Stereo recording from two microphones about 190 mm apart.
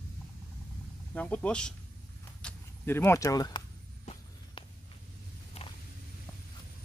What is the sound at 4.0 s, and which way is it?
Walk, 35° left (ahead or behind).